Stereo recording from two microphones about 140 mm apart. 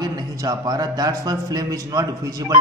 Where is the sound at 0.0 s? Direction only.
25° right (ahead or behind).